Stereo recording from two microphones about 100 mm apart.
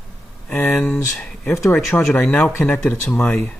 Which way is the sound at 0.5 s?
25° left (ahead or behind).